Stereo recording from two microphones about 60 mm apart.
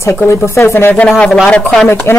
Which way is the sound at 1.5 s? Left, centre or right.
Centre.